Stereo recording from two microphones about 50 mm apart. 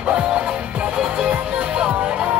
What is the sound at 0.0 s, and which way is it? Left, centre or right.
Music, right.